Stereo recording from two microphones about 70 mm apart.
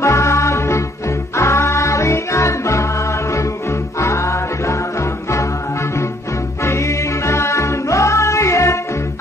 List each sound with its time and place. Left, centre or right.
0.0 s music: left
6.6 s music: left